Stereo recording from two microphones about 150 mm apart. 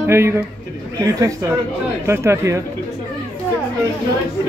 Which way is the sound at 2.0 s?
15° right (ahead or behind).